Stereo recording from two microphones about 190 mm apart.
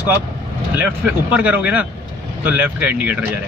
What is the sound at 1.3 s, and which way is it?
Speech, 10° right (ahead or behind).